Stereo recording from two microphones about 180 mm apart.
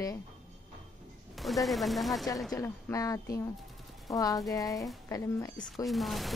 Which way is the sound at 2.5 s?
15° left (ahead or behind).